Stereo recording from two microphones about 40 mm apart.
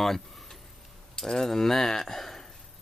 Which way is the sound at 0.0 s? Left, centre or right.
Centre.